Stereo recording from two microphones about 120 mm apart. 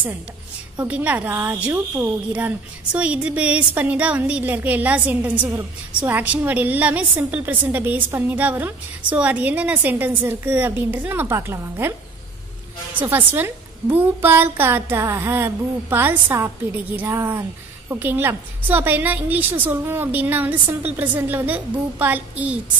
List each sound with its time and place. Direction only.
0.7 s a woman's voice: 10° right (ahead or behind)
12.9 s a woman's voice: 15° right (ahead or behind)